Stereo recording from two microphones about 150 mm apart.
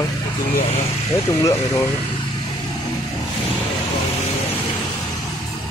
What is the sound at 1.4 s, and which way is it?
Speech, 20° left (ahead or behind).